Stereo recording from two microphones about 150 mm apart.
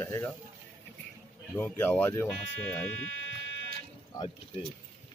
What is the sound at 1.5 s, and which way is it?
Speech, 10° left (ahead or behind).